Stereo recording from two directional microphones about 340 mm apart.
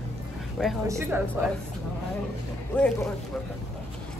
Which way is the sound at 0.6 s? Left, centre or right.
Centre.